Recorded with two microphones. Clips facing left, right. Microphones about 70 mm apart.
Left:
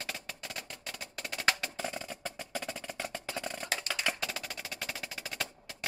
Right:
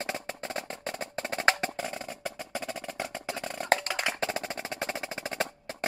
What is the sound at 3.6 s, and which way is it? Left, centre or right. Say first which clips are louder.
Percussion: right 10 dB; right.